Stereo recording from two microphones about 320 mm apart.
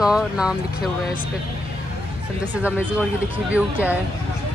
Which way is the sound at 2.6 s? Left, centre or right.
Centre.